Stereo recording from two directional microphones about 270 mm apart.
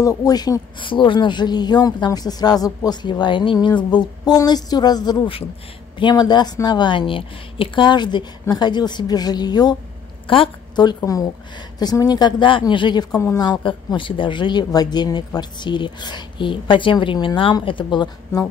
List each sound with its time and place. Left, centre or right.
0.0 s a woman's voice: centre